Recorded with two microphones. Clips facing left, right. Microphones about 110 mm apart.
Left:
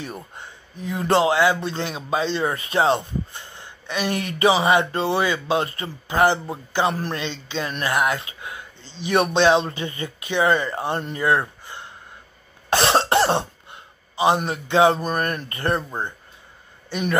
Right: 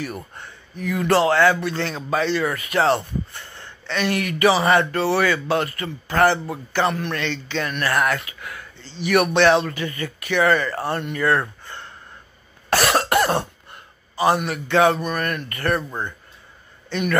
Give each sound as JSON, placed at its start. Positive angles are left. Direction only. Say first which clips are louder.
{"t": 0.0, "sound": "speech", "louder": "right 3 dB", "side_deg": 20}
{"t": 4.1, "sound": "speech", "louder": "right 1 dB", "side_deg": 25}
{"t": 6.9, "sound": "a man's voice", "louder": "even", "side_deg": 30}
{"t": 7.2, "sound": "a man's voice", "louder": "right 2 dB", "side_deg": 20}
{"t": 11.1, "sound": "a sound", "louder": "even", "side_deg": 15}
{"t": 12.7, "sound": "cough", "louder": "even", "side_deg": 25}
{"t": 14.5, "sound": "speech", "louder": "even", "side_deg": 20}
{"t": 15.0, "sound": "speech", "louder": "left 1 dB", "side_deg": 30}